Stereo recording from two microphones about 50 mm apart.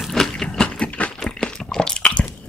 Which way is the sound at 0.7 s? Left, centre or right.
Left.